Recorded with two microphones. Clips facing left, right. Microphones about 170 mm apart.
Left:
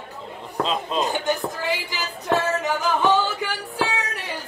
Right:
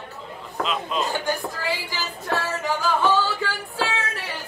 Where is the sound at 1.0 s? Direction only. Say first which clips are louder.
Left 2 dB; 20° left (ahead or behind).